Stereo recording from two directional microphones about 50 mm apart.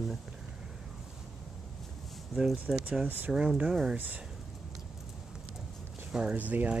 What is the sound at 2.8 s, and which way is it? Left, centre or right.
Speech, right.